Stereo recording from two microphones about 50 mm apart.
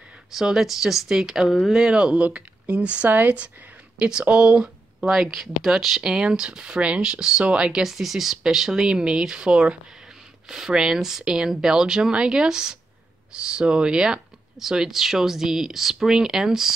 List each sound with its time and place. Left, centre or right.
0.3 s speech: centre; by 3.4 s right
4.0 s speech: right
5.0 s speech: centre
6.0 s speech: centre